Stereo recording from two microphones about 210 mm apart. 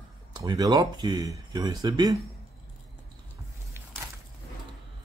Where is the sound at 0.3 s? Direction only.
20° right (ahead or behind).